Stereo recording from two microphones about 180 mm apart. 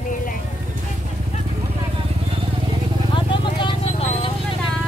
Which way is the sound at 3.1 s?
25° left (ahead or behind).